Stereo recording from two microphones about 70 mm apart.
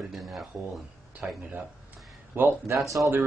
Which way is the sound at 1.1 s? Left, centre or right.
Right.